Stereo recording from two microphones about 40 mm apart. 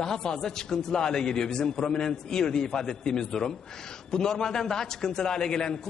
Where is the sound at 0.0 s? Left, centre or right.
Centre.